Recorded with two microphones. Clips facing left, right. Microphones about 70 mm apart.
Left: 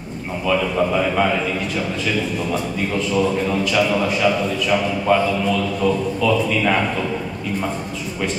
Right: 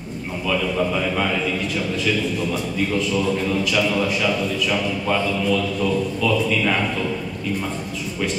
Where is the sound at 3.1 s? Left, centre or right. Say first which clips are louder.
Left 5 dB; centre.